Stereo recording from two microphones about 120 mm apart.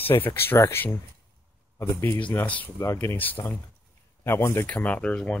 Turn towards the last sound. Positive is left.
turn(degrees=10)  # may be behind; listen again after turning